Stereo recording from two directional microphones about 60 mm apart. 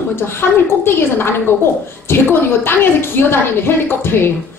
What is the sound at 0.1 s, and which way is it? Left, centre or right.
A woman's voice, left.